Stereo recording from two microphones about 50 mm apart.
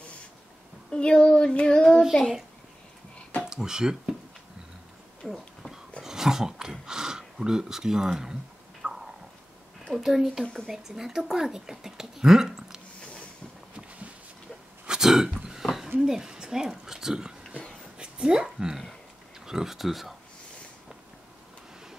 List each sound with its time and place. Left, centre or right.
0.9 s child singing: left
3.4 s speech: centre
5.2 s a sound: centre
8.8 s chewing: right
9.9 s speech: centre
10.4 s speech: centre
10.7 s speech: centre
13.0 s a sound: left
14.9 s throat clearing: centre
15.6 s a sound: centre
16.0 s speech: centre
17.9 s a sound: centre
19.4 s speech: centre